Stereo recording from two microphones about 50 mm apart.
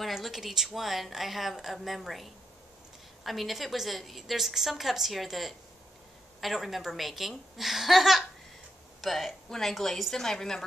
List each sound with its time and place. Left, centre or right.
0.0 s a woman's voice: centre